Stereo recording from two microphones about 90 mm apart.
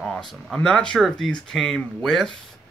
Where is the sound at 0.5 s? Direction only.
10° left (ahead or behind).